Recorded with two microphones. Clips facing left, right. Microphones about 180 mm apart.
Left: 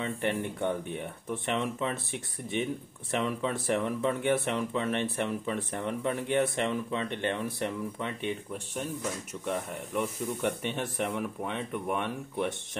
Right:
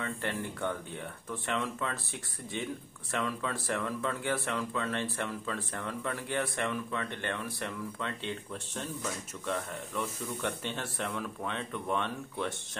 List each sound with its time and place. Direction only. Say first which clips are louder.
0.0 s speech: left 5 dB; 20° left (ahead or behind)